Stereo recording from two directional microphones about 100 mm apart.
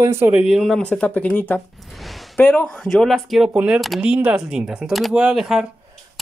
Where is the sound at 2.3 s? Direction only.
15° left (ahead or behind).